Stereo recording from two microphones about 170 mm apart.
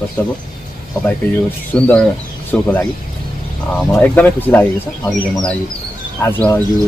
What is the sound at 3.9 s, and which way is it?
Speech, 10° left (ahead or behind).